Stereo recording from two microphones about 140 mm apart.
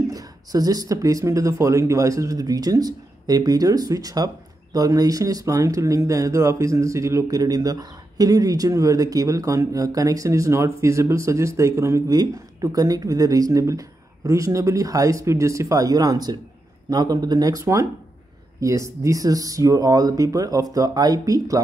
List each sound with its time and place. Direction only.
0.1 s speech: 25° right (ahead or behind)